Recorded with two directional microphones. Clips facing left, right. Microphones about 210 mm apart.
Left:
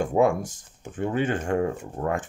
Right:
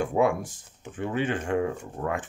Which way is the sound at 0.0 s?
45° left (ahead or behind).